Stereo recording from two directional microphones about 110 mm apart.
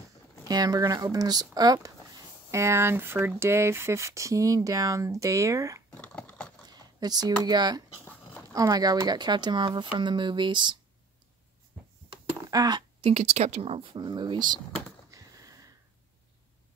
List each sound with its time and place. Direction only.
0.5 s speech: 35° right (ahead or behind)
5.9 s dog: 10° left (ahead or behind)
6.7 s speech: 35° right (ahead or behind)
8.0 s dog: 10° left (ahead or behind)
8.5 s speech: 35° right (ahead or behind)
12.4 s speech: 35° right (ahead or behind)
13.0 s speech: 70° right (ahead or behind)
13.9 s speech: 45° right (ahead or behind)
15.0 s a sound: 30° right (ahead or behind)